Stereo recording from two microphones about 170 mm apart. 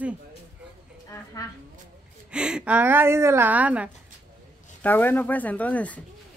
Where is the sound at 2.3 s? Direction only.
5° right (ahead or behind).